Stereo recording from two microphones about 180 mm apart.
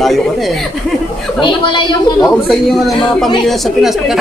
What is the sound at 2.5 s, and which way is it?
Speech, centre (ahead or behind).